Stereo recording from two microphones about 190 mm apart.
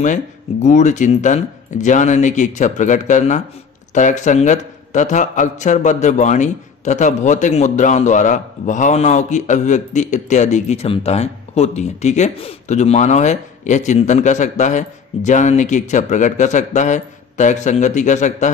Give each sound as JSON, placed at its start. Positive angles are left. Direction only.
{"t": 0.7, "sound": "a man's voice", "side_deg": 40}